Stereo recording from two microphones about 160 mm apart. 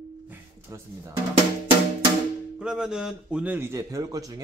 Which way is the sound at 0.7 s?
20° right (ahead or behind).